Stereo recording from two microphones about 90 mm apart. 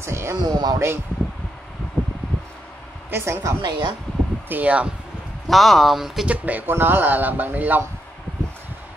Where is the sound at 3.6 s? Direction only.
55° right (ahead or behind).